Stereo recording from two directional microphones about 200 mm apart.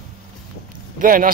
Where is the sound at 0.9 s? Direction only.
45° right (ahead or behind).